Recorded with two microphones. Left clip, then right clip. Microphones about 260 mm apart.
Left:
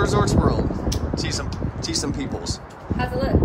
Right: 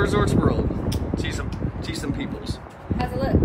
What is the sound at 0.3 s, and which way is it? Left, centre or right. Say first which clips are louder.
Vehicle: left 1 dB; centre.